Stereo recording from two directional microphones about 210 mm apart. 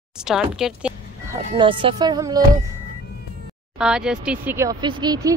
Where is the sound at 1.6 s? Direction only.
25° right (ahead or behind).